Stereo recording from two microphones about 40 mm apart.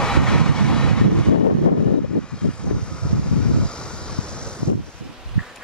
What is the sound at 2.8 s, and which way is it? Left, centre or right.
Waves, left.